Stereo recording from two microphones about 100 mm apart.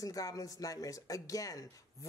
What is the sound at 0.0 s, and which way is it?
Speech, 35° left (ahead or behind).